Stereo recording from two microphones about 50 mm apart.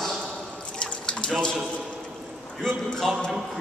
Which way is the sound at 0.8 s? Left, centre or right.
Centre.